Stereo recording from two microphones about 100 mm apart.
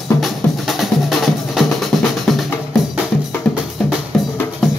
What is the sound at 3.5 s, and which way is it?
Music, 5° left (ahead or behind).